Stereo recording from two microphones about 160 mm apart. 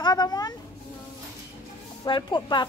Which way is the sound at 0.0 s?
25° left (ahead or behind).